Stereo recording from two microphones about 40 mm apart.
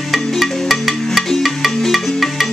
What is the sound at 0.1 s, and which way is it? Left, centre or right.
Music, centre.